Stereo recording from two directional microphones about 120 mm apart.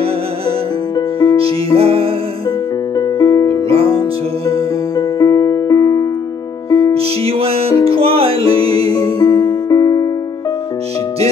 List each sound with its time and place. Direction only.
0.9 s music: 35° left (ahead or behind)
1.8 s music: 55° right (ahead or behind)
3.0 s music: 30° left (ahead or behind)
3.6 s music: 55° right (ahead or behind)
4.5 s music: 30° left (ahead or behind)
6.9 s music: 55° right (ahead or behind)
8.5 s music: 35° left (ahead or behind)